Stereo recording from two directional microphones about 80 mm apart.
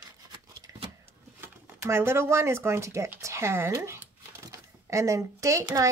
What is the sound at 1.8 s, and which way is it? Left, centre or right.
Speech, right.